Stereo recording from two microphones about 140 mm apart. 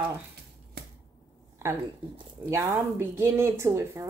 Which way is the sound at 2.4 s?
15° right (ahead or behind).